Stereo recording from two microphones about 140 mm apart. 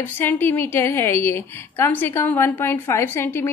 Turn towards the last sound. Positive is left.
turn(degrees=15)  # may be behind; listen again after turning